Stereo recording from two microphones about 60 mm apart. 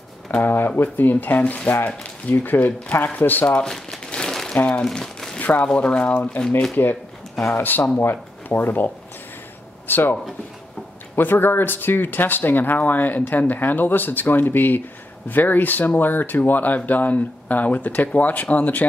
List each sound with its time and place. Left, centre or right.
0.4 s speech: left
3.4 s speech: centre
3.7 s crumpling: centre
4.6 s speech: left
4.8 s crumpling: centre
5.4 s speech: left
6.8 s speech: left
11.1 s speech: left